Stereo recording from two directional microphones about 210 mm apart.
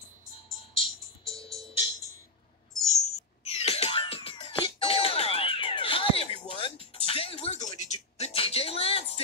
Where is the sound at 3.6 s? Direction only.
30° left (ahead or behind).